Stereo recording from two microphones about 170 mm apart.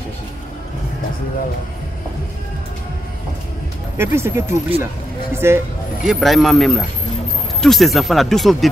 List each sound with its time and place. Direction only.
4.0 s speech: 15° right (ahead or behind)
6.0 s speech: centre (ahead or behind)